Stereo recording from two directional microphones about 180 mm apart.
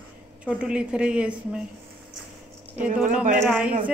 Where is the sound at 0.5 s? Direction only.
5° right (ahead or behind).